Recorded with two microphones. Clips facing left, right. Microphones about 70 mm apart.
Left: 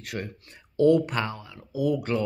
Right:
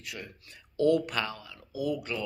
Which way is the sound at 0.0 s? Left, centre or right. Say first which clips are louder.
Left 8 dB; left.